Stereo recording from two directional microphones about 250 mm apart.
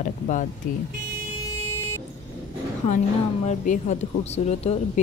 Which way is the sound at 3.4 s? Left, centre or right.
Left.